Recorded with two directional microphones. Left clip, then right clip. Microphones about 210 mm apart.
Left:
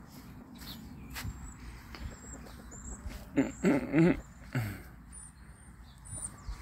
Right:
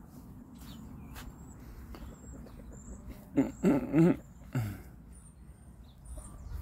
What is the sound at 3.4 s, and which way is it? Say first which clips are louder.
Dog: even; 10° right (ahead or behind).